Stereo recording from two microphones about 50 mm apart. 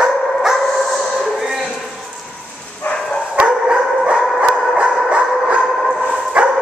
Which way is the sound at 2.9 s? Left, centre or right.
Centre.